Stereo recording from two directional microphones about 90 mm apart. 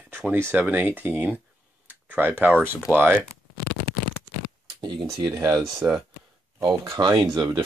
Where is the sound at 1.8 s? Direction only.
20° right (ahead or behind).